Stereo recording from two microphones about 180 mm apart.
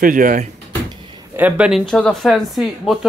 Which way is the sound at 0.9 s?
25° right (ahead or behind).